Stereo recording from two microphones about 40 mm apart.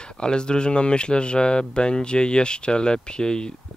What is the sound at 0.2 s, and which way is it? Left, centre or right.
Speech, left.